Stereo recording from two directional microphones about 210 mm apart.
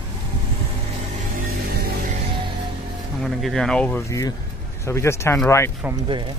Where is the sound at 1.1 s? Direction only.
40° right (ahead or behind).